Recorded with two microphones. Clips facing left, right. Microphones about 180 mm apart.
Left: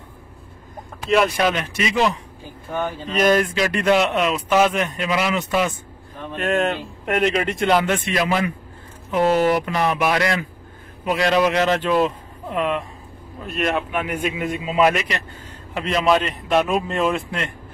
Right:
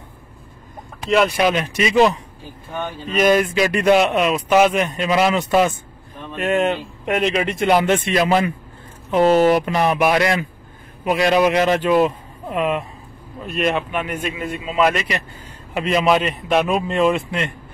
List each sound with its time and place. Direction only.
1.3 s speech: 15° right (ahead or behind)
3.2 s speech: 10° right (ahead or behind); by 5.7 s 35° right (ahead or behind)
6.3 s a man's voice: centre (ahead or behind)
7.6 s a man's voice: 20° right (ahead or behind); by 15.0 s 15° left (ahead or behind)
15.7 s a man's voice: 10° right (ahead or behind)